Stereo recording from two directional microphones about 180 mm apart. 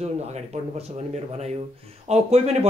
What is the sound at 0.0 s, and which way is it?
Speech, 35° right (ahead or behind).